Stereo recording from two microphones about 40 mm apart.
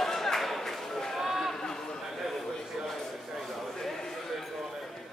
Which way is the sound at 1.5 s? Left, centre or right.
Centre.